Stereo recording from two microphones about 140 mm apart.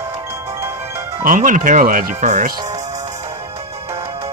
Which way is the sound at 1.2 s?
70° right (ahead or behind).